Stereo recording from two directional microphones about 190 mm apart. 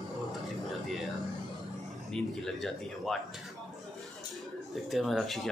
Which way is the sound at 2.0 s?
Centre (ahead or behind).